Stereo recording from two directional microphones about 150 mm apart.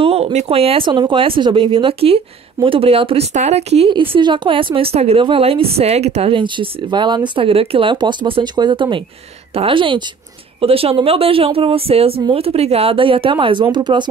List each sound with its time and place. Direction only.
0.0 s a woman's voice: 40° right (ahead or behind)
3.9 s a woman's voice: 35° right (ahead or behind)